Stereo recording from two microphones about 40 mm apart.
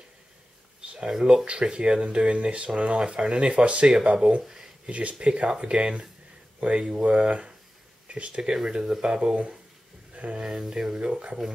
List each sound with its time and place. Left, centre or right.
0.8 s speech: centre
4.4 s speech: centre
4.8 s speech: right
8.6 s speech: centre
10.1 s speech: right
10.4 s speech: centre